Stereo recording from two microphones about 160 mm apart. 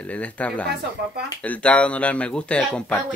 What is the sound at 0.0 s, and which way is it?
Speech, 10° left (ahead or behind).